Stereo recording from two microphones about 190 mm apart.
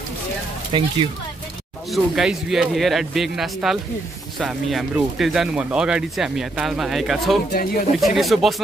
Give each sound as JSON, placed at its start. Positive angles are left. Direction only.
{"t": 0.7, "sound": "speech", "side_deg": -25}
{"t": 1.9, "sound": "speech", "side_deg": 0}
{"t": 7.5, "sound": "speech", "side_deg": 50}
{"t": 8.0, "sound": "speech", "side_deg": 0}